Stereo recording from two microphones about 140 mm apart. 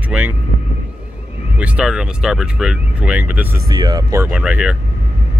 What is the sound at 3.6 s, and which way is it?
Speech, 30° right (ahead or behind).